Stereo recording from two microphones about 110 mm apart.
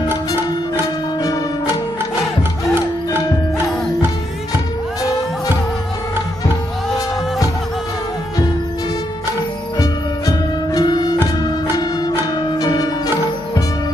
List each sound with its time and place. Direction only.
2.7 s music: 20° right (ahead or behind)
9.8 s music: 35° left (ahead or behind)